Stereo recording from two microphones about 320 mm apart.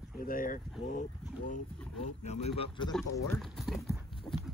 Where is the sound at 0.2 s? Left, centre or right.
Left.